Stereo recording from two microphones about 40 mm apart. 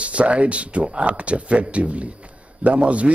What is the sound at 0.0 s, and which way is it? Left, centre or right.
A man's voice, right.